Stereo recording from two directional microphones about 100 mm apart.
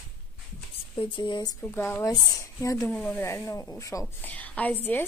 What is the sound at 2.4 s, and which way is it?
Speech, 30° left (ahead or behind).